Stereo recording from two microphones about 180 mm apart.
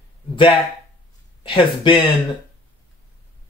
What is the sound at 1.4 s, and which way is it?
Speech, 25° left (ahead or behind).